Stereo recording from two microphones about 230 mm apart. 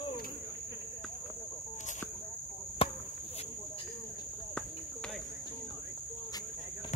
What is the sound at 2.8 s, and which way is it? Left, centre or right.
Cricket, left.